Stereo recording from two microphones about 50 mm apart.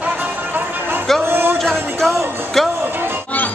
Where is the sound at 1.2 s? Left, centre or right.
Right.